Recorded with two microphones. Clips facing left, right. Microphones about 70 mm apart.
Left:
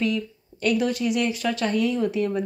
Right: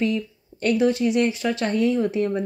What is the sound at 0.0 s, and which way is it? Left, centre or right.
Speech, right.